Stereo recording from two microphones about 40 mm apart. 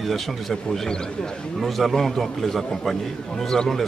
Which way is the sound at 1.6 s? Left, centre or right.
Centre.